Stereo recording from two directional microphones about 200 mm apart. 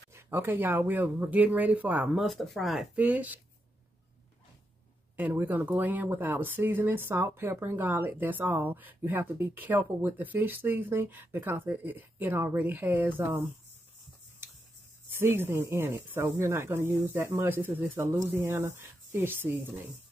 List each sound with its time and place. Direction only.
0.1 s speech: 10° right (ahead or behind)
5.1 s speech: 10° right (ahead or behind)
15.1 s speech: 10° right (ahead or behind)